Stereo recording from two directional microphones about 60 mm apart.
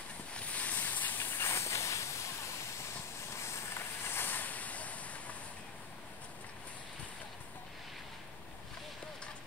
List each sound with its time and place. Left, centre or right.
0.3 s hiss: left
3.3 s vehicle: left